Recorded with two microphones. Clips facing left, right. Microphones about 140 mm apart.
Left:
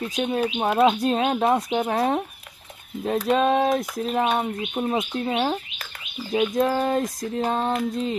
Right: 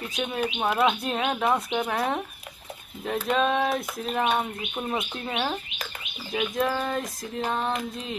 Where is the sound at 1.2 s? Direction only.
25° left (ahead or behind).